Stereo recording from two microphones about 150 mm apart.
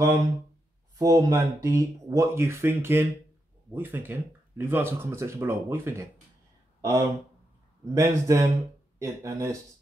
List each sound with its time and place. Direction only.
0.9 s speech: 20° right (ahead or behind)